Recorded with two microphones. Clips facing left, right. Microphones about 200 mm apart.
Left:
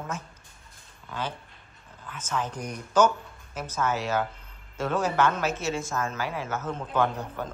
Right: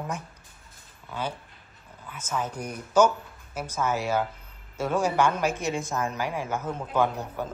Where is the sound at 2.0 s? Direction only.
10° right (ahead or behind).